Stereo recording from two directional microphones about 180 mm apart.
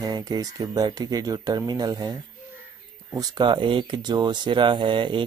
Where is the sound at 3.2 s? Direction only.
25° right (ahead or behind).